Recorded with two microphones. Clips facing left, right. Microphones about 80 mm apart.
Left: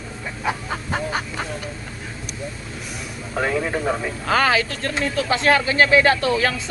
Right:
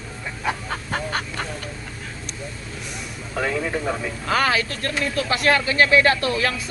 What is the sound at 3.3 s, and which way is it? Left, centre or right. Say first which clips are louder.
Speech: left 2 dB; left.